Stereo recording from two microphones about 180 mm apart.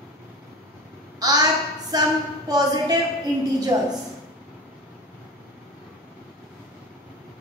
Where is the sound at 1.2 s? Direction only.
20° right (ahead or behind).